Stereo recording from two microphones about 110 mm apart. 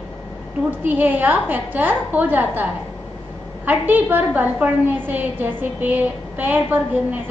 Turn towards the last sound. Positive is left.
turn(degrees=-15)  # may be behind; listen again after turning